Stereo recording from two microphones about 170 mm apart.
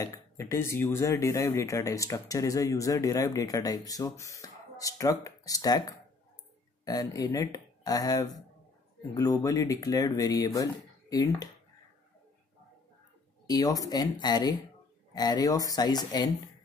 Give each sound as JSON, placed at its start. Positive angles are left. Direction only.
{"t": 0.0, "sound": "speech", "side_deg": 20}
{"t": 13.5, "sound": "speech", "side_deg": 20}